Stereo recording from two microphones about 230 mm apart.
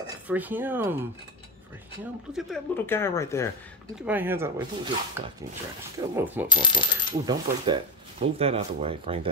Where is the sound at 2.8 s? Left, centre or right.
Centre.